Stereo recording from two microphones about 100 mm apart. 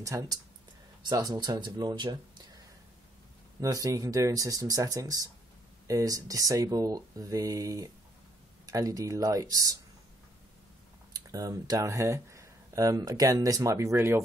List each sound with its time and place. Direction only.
0.0 s speech: 30° right (ahead or behind)
1.0 s speech: 45° right (ahead or behind)
3.6 s speech: 35° right (ahead or behind)
11.1 s speech: 35° right (ahead or behind)